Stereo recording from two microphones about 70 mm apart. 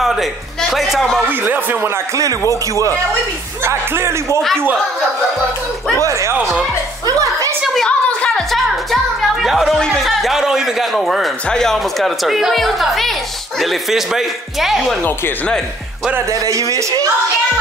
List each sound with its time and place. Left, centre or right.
0.0 s music: centre
0.6 s a woman's voice: centre
1.3 s speech: right
2.5 s speech: right
3.6 s speech: right
5.9 s speech: right
7.1 s a sound: right
7.8 s a woman's voice: centre
10.0 s a woman's voice: centre
16.3 s speech: right